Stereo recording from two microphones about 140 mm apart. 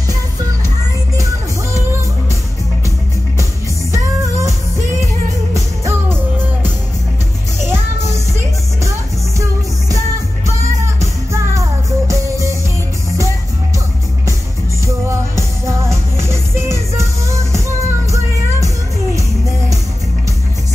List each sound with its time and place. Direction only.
3.9 s music: 20° right (ahead or behind)
7.6 s music: 20° right (ahead or behind)
9.4 s music: 25° right (ahead or behind)
15.0 s music: 20° right (ahead or behind)